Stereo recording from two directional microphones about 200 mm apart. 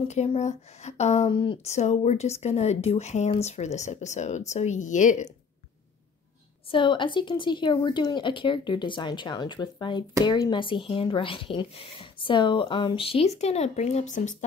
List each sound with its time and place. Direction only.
0.1 s speech: 35° left (ahead or behind)
6.7 s speech: 25° left (ahead or behind)